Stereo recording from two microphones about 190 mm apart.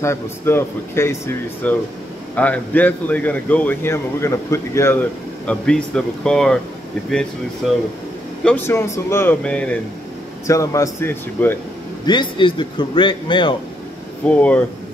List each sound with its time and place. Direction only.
0.0 s a man's voice: 15° left (ahead or behind)
5.5 s speech: 5° left (ahead or behind)
8.5 s a man's voice: 10° left (ahead or behind)
12.1 s a man's voice: 25° left (ahead or behind)
14.2 s a man's voice: 5° left (ahead or behind)